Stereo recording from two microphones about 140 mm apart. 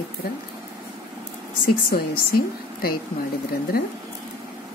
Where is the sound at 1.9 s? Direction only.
90° left.